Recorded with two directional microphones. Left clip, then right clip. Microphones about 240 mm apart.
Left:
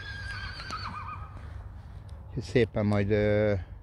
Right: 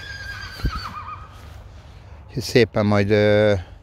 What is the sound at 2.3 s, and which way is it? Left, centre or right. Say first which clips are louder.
Speech: right 9 dB; right.